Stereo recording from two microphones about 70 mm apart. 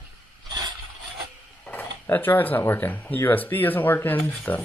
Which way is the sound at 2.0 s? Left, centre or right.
Left.